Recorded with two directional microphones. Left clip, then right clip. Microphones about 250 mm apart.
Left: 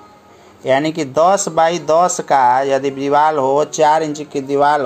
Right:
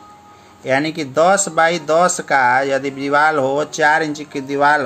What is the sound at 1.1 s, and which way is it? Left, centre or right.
Speech, right.